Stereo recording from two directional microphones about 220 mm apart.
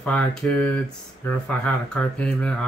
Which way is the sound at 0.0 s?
5° left (ahead or behind).